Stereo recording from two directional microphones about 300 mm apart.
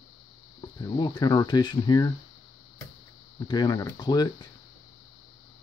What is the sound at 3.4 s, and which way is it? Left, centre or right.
Speech, centre.